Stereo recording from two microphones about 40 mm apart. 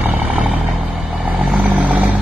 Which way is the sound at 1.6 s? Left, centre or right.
Right.